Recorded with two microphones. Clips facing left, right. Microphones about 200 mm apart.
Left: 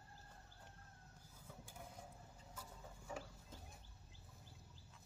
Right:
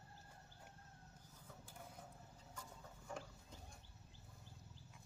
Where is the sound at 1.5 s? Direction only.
10° left (ahead or behind).